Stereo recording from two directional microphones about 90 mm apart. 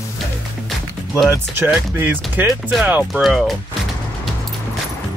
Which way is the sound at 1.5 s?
25° right (ahead or behind).